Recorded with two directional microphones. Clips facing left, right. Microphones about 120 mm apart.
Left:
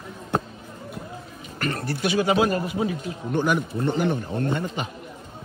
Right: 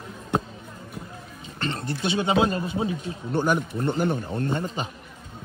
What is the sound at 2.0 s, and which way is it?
A man's voice, 25° right (ahead or behind).